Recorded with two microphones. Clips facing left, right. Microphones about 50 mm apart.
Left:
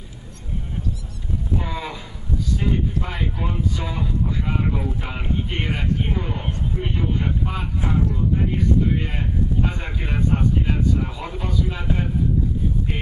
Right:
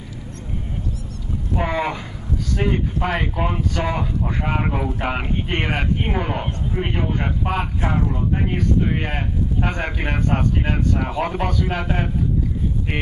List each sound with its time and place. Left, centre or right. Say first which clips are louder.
1.6 s speech: right 7 dB; right